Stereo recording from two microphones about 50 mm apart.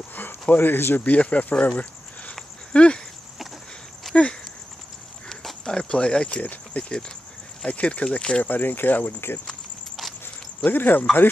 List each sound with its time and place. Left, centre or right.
0.1 s a sound: left
1.0 s speech: left
4.1 s a sound: centre
5.3 s walk: centre
5.7 s speech: centre
8.4 s speech: left
10.6 s speech: left